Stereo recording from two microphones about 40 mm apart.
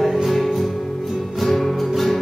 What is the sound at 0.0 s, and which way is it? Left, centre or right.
Music, centre.